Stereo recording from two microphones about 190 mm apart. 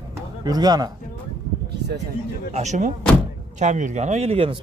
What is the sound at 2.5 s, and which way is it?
Speech, 40° right (ahead or behind).